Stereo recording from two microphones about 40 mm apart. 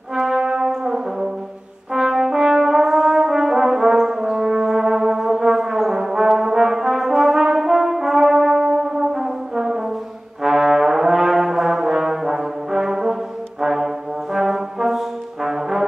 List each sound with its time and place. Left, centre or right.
0.1 s brass instrument: centre